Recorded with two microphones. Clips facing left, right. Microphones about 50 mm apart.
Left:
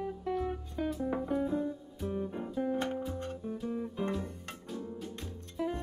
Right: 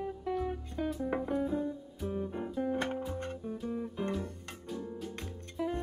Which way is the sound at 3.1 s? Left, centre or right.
Right.